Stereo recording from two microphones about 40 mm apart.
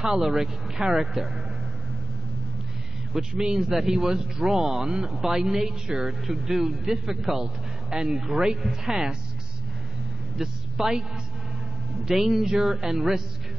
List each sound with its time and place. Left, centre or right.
0.0 s a man's voice: centre
3.1 s a man's voice: centre
7.9 s a man's voice: centre
10.3 s a man's voice: centre